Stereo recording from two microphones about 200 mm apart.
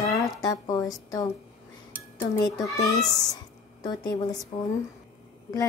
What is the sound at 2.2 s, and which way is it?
Dishes, 15° left (ahead or behind).